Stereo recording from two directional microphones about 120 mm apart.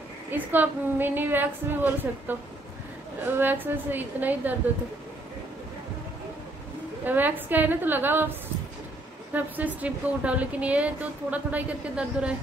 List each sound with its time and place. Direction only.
0.3 s speech: 15° right (ahead or behind)
7.1 s speech: 15° right (ahead or behind)
9.3 s speech: 15° right (ahead or behind)